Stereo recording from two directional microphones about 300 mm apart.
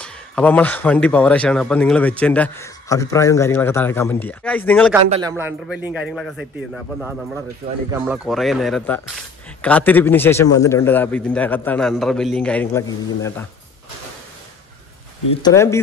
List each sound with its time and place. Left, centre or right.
0.0 s speech: centre
15.4 s speech: centre